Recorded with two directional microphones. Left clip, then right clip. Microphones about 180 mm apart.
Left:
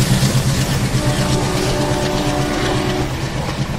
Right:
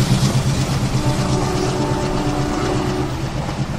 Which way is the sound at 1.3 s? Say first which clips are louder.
Left 2 dB; 45° left (ahead or behind).